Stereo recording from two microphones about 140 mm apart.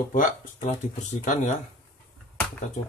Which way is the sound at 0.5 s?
55° left (ahead or behind).